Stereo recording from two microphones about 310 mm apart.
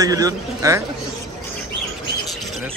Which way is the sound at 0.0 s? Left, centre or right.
Centre.